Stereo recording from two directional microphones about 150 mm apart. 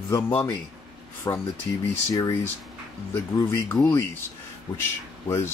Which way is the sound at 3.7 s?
15° left (ahead or behind).